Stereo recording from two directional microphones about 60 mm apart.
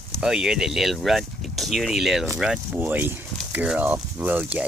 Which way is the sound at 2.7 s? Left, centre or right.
Right.